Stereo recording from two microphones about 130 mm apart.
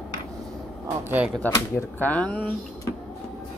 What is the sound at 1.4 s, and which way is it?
Speech, 20° left (ahead or behind).